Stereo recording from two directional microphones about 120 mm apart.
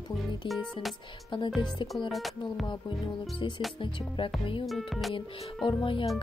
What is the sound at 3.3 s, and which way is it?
Speech, 40° left (ahead or behind).